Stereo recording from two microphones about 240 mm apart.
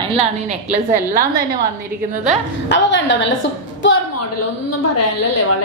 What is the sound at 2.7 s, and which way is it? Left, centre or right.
Speech, left.